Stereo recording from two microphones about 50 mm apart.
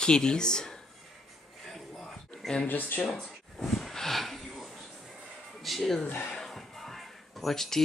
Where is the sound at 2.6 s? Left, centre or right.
Left.